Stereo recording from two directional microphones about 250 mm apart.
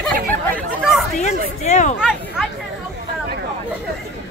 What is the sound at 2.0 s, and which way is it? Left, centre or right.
Chatter, centre.